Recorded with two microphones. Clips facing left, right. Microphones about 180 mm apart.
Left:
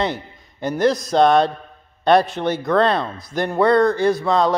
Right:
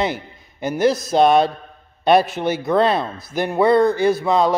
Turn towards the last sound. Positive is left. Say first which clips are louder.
# right 1 dB
turn(degrees=-5)  # may be behind; listen again after turning